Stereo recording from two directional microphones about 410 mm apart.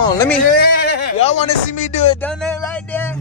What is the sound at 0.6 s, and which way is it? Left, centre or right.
Speech, left.